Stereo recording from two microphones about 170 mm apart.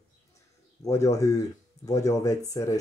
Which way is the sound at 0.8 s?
20° left (ahead or behind).